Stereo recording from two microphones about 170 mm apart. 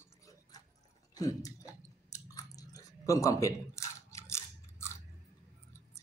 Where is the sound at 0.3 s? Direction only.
20° left (ahead or behind).